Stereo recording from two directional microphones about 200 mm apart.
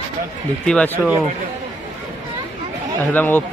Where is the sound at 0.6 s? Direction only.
5° left (ahead or behind).